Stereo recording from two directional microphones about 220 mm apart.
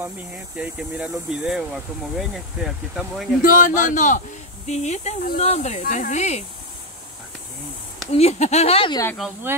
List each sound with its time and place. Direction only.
0.6 s speech: 5° right (ahead or behind)
3.4 s speech: 40° left (ahead or behind)
8.1 s speech: 30° left (ahead or behind)
9.0 s speech: 5° left (ahead or behind)